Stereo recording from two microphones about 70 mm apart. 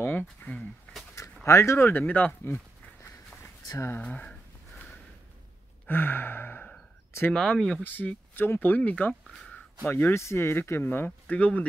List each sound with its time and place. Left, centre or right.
0.0 s speech: left
1.4 s speech: left
1.9 s speech: left
3.6 s speech: left
4.0 s speech: left
5.9 s speech: left
7.3 s speech: centre
7.8 s speech: left
9.8 s speech: left
11.1 s speech: centre